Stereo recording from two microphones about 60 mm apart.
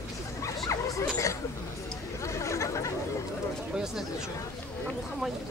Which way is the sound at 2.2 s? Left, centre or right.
Left.